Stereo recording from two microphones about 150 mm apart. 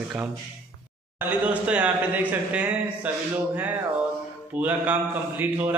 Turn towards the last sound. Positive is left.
turn(degrees=-10)  # may be behind; listen again after turning